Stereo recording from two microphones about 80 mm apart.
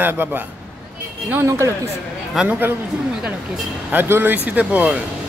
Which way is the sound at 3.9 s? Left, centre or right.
Right.